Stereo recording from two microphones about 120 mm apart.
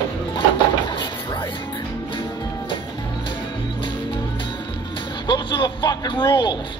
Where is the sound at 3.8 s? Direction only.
40° left (ahead or behind).